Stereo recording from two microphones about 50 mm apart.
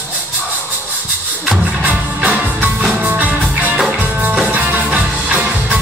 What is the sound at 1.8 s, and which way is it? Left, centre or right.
Music, right.